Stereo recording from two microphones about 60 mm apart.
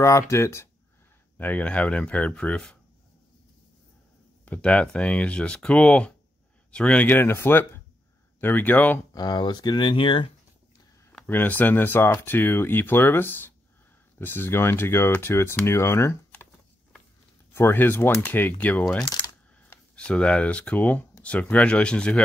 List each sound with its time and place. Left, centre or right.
0.0 s speech: left
1.4 s speech: left
4.5 s speech: centre
7.1 s speech: left
11.2 s speech: left
17.6 s speech: left
20.0 s speech: centre